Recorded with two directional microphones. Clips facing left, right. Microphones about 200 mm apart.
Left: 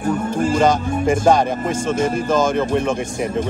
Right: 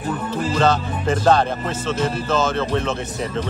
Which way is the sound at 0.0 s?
50° left (ahead or behind).